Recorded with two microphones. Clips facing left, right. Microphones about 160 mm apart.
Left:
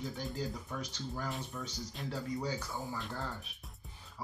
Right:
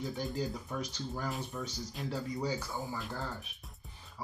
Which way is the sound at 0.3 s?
15° right (ahead or behind).